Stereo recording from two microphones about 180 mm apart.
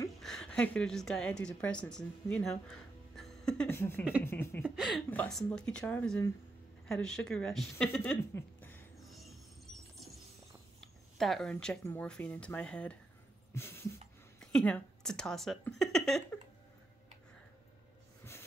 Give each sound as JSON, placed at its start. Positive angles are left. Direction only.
{"t": 0.2, "sound": "a woman's voice", "side_deg": 5}
{"t": 4.6, "sound": "speech", "side_deg": 0}
{"t": 8.9, "sound": "music", "side_deg": 0}
{"t": 10.8, "sound": "a sound", "side_deg": 0}
{"t": 11.5, "sound": "speech", "side_deg": 10}
{"t": 13.5, "sound": "a sound", "side_deg": 15}
{"t": 14.4, "sound": "speech", "side_deg": 5}